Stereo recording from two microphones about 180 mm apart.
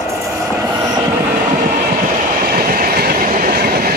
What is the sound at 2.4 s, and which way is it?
Train, 55° right (ahead or behind).